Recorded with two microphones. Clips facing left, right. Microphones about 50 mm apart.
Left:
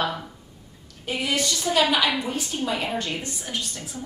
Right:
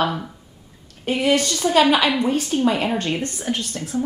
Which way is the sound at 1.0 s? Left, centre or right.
Right.